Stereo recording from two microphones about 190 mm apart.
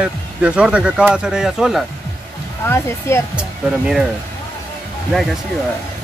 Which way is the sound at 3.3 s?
5° right (ahead or behind).